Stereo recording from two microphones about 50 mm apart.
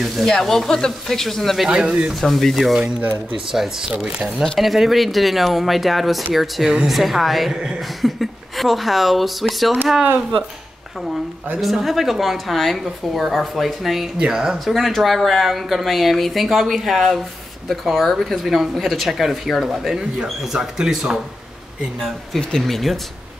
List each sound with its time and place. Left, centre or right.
0.0 s speech: centre
1.7 s speech: centre
2.2 s speech: centre
4.6 s speech: centre
11.6 s speech: centre
14.1 s speech: centre
14.7 s speech: centre
22.6 s speech: centre